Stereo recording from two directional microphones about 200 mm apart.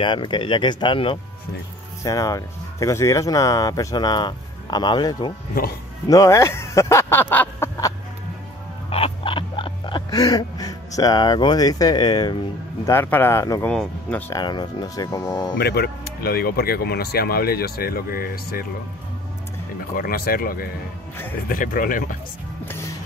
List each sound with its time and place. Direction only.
0.0 s speech: 25° left (ahead or behind)
5.5 s speech: 45° left (ahead or behind)
6.0 s speech: 15° left (ahead or behind)
8.9 s music: 25° left (ahead or behind)
12.8 s speech: 10° left (ahead or behind)
15.5 s speech: 50° left (ahead or behind)
20.0 s speech: 45° left (ahead or behind)